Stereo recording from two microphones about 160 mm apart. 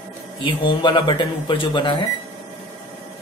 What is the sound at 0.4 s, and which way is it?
Speech, 30° left (ahead or behind).